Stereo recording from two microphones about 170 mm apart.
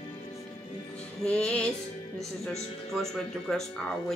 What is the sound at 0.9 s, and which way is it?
Music, 5° left (ahead or behind).